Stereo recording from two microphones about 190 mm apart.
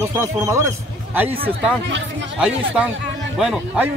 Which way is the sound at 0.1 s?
15° right (ahead or behind).